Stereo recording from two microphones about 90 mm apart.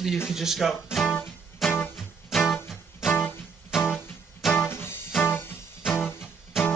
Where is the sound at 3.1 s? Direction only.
20° left (ahead or behind).